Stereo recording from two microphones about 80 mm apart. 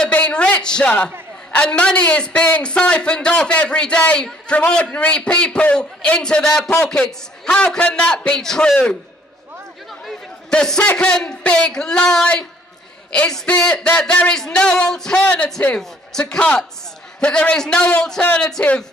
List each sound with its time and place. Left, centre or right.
0.1 s a sound: centre
0.6 s a man's voice: centre
10.5 s a man's voice: centre